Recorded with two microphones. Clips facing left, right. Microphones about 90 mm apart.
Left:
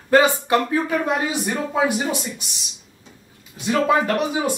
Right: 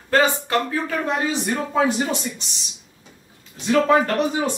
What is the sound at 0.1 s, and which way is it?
Speech, 15° left (ahead or behind).